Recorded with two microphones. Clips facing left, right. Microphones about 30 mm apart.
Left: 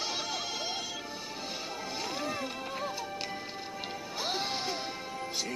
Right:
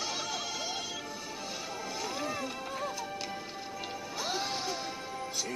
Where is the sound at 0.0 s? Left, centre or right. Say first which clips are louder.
Left 1 dB; left.